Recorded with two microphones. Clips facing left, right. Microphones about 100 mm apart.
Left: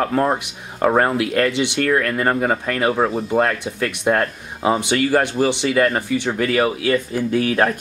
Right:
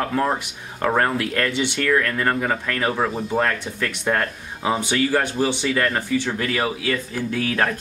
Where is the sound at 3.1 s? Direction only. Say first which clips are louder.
Left 3 dB; 5° left (ahead or behind).